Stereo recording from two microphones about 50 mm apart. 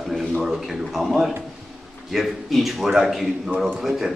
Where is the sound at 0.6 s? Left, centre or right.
Centre.